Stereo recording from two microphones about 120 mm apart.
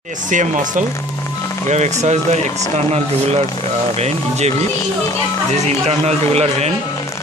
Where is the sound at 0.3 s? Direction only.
90° right.